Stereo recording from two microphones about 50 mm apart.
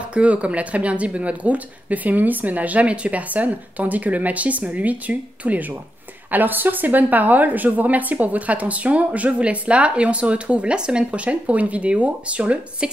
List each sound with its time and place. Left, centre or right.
0.1 s a woman's voice: right